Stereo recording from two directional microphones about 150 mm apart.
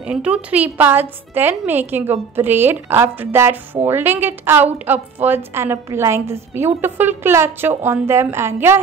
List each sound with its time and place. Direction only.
0.0 s a woman's voice: 5° right (ahead or behind)